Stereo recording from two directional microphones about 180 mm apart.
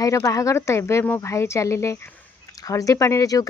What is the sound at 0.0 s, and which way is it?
Speech, 20° left (ahead or behind).